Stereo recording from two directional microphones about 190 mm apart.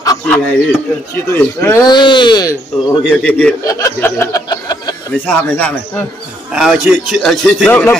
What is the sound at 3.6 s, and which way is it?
Chuckle, 15° left (ahead or behind).